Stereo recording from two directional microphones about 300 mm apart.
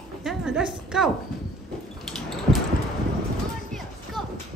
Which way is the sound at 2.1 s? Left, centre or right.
Centre.